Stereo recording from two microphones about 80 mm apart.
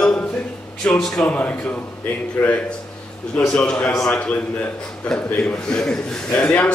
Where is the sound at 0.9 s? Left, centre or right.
Centre.